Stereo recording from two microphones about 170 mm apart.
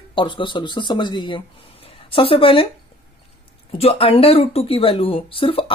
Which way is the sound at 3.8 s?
35° left (ahead or behind).